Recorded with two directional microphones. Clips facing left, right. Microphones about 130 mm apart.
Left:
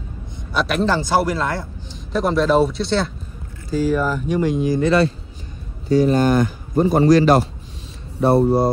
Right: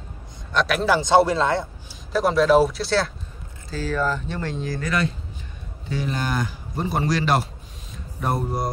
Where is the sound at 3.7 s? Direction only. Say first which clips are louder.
Left 5 dB; 10° left (ahead or behind).